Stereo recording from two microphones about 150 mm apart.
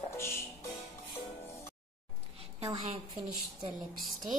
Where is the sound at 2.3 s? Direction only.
40° right (ahead or behind).